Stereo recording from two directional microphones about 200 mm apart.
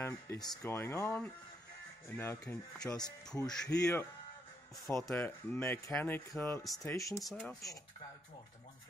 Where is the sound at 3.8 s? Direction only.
15° left (ahead or behind).